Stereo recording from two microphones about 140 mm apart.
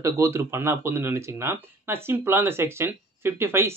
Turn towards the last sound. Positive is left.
turn(degrees=-15)  # may be behind; listen again after turning